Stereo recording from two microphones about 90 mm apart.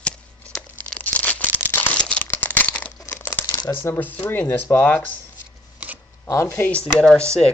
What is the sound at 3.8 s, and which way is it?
Speech, 25° left (ahead or behind).